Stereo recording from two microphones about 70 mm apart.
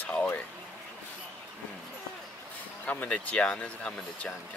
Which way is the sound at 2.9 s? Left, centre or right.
Left.